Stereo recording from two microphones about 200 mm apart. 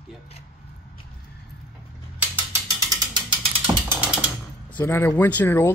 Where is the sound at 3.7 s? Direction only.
15° right (ahead or behind).